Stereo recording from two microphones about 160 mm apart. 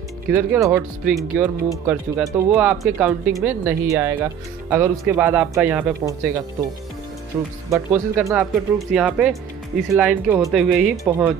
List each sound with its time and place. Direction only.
0.3 s speech: 10° right (ahead or behind)
7.3 s speech: 10° right (ahead or behind)
8.4 s speech: 5° right (ahead or behind)